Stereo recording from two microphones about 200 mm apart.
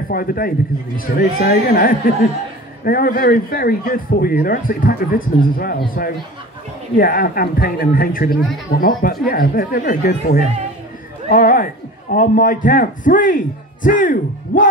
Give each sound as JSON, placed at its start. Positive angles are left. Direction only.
{"t": 0.1, "sound": "speech", "side_deg": 45}
{"t": 7.0, "sound": "speech", "side_deg": 50}